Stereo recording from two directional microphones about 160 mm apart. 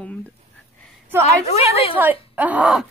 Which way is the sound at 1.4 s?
40° left (ahead or behind).